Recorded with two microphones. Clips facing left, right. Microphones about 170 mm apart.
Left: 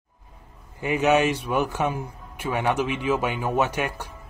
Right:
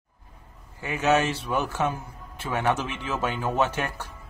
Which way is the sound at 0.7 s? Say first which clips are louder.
Left 3 dB; 15° left (ahead or behind).